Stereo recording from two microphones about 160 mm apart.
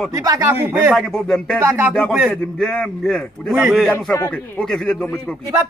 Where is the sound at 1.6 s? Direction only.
15° right (ahead or behind).